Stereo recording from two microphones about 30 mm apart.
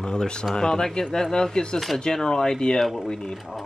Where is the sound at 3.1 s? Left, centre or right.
Left.